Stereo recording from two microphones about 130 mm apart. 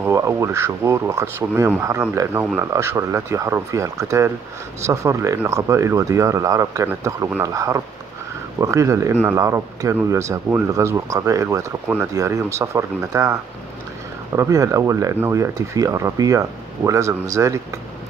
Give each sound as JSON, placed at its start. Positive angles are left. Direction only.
{"t": 0.0, "sound": "speech", "side_deg": -20}